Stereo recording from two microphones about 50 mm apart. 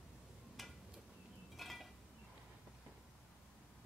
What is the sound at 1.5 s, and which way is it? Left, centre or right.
Dishes, centre.